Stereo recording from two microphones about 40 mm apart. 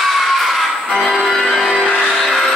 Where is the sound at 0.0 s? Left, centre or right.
Centre.